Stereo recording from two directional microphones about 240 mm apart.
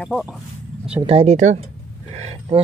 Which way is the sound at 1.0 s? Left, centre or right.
Right.